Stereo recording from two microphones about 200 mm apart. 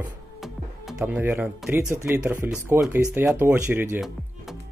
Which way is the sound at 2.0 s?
10° right (ahead or behind).